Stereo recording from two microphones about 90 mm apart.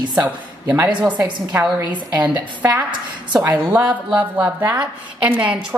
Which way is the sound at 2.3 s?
15° right (ahead or behind).